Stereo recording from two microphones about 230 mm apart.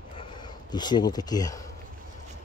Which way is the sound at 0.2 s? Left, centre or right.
Centre.